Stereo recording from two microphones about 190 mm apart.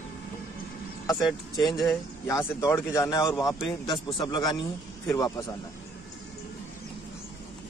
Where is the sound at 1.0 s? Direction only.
20° left (ahead or behind).